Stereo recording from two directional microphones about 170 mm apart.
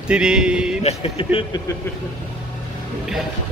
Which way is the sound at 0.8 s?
35° left (ahead or behind).